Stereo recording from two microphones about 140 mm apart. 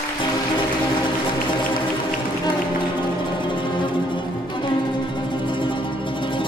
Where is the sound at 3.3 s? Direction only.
35° left (ahead or behind).